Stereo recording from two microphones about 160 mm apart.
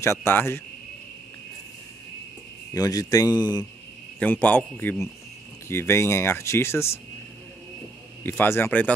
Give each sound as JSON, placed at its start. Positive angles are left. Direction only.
{"t": 0.0, "sound": "speech", "side_deg": 15}
{"t": 2.7, "sound": "a man's voice", "side_deg": 25}
{"t": 4.2, "sound": "speech", "side_deg": 10}
{"t": 8.2, "sound": "speech", "side_deg": 10}